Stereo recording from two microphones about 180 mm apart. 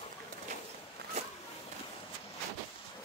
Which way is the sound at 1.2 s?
35° right (ahead or behind).